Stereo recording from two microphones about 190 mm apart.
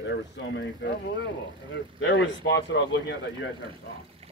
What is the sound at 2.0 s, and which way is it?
Speech, 70° left (ahead or behind).